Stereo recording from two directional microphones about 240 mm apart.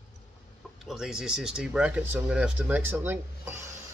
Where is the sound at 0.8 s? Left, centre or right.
Centre.